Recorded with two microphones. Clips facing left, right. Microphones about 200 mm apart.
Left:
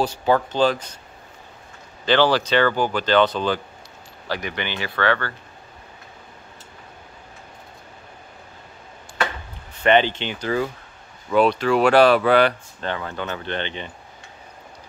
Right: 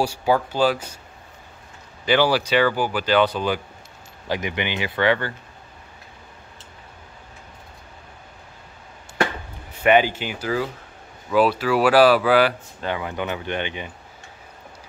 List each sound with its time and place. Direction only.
0.0 s speech: 10° right (ahead or behind)
2.0 s speech: 10° right (ahead or behind)
9.8 s speech: 10° right (ahead or behind)